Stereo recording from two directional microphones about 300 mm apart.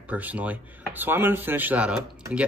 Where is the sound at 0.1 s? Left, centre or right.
Centre.